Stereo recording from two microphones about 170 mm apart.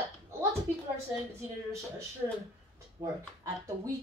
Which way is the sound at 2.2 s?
15° right (ahead or behind).